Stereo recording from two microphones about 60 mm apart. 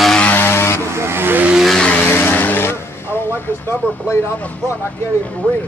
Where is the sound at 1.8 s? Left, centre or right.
Left.